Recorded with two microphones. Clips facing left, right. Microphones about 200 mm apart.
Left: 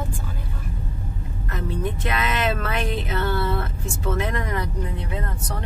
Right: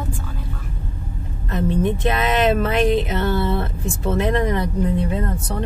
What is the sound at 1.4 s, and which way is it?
A woman's voice, 25° right (ahead or behind).